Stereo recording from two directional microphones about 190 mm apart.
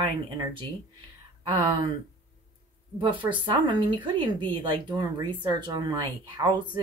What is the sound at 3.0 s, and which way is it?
Speech, 25° right (ahead or behind).